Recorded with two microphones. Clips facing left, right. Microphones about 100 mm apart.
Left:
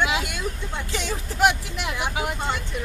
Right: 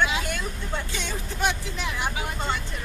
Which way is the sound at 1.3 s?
75° left (ahead or behind).